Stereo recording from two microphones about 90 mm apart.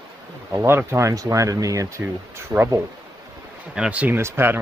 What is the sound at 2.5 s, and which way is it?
Speech, 30° right (ahead or behind).